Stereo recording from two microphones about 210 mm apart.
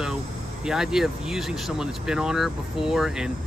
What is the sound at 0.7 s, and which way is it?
Speech, centre (ahead or behind).